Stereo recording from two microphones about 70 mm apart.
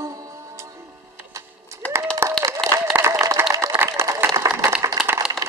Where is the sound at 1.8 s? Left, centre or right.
Left.